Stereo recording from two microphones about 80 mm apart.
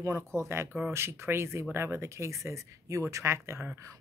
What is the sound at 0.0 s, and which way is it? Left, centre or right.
Speech, right.